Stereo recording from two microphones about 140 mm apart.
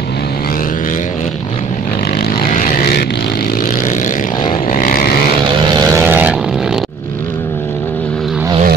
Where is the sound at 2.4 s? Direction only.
65° left (ahead or behind).